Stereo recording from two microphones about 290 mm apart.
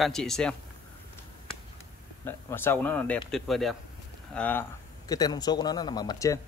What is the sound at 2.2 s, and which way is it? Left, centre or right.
A man's voice, centre.